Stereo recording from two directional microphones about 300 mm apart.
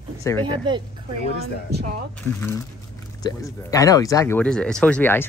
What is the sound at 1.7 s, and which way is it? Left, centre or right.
Speech, right.